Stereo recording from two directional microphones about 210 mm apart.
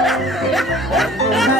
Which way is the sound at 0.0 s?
Centre (ahead or behind).